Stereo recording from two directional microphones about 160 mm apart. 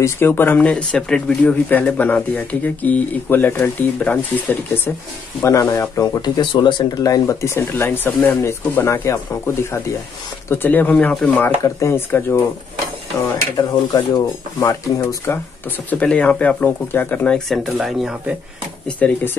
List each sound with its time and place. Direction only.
0.0 s speech: 15° left (ahead or behind)
13.6 s speech: 25° left (ahead or behind); by 18.3 s 5° right (ahead or behind)
18.9 s speech: 10° left (ahead or behind)